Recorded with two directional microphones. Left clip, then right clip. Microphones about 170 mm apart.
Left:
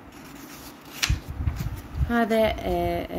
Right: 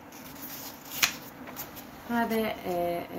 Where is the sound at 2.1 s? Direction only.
55° left (ahead or behind).